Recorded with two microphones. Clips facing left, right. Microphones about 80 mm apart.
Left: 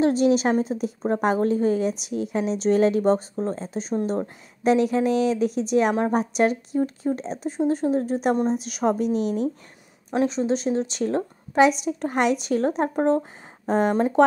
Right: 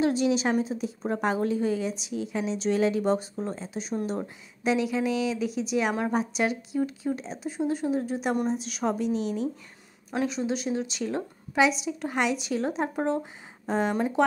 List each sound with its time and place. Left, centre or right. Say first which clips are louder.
0.0 s a woman's voice: left 5 dB; left
7.0 s speech: left 4 dB; centre
7.4 s speech: left 5 dB; left
8.1 s a woman's voice: left 5 dB; left
10.1 s a woman's voice: left 6 dB; left
12.9 s speech: left 6 dB; left
13.7 s a woman's voice: left 5 dB; left